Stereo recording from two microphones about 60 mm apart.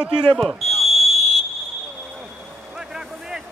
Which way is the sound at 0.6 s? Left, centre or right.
Centre.